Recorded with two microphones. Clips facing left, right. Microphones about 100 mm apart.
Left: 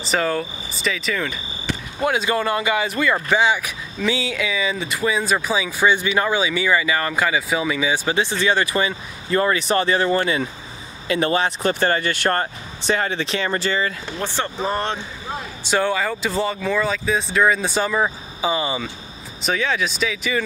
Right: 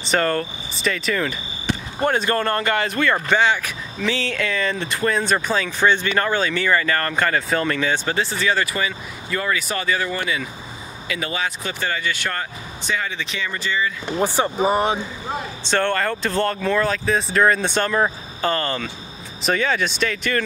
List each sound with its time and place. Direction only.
0.0 s speech: centre (ahead or behind); by 13.9 s 50° left (ahead or behind)
14.0 s speech: 15° right (ahead or behind)
15.6 s speech: 10° left (ahead or behind)